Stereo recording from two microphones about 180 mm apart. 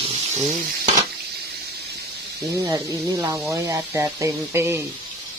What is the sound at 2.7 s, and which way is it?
Speech, 15° right (ahead or behind).